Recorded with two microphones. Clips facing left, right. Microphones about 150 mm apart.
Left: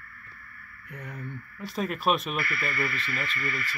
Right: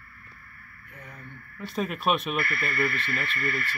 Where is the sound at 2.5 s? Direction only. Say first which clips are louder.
Right 2 dB; 55° right (ahead or behind).